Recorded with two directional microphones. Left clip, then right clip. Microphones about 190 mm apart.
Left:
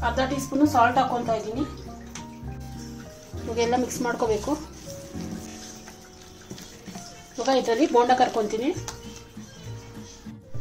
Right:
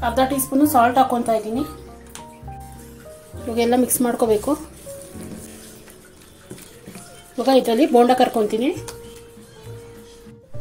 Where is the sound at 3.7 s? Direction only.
Centre (ahead or behind).